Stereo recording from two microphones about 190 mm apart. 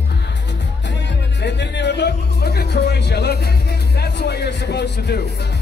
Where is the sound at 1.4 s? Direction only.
65° left (ahead or behind).